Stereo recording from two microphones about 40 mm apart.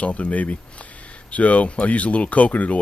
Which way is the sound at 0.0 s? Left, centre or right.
Left.